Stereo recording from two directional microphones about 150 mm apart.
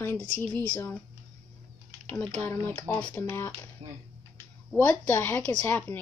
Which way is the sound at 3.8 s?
35° right (ahead or behind).